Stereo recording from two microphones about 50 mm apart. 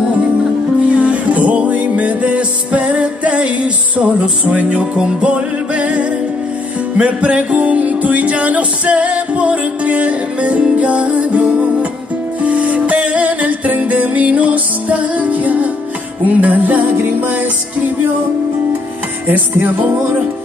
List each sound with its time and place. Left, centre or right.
0.8 s music: right
19.2 s music: right